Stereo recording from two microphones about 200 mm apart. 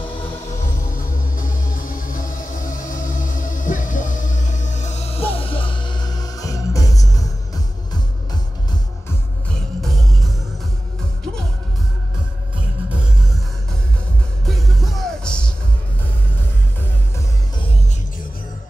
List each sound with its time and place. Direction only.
1.3 s music: 45° left (ahead or behind); by 7.2 s 15° left (ahead or behind)
15.0 s music: 5° left (ahead or behind)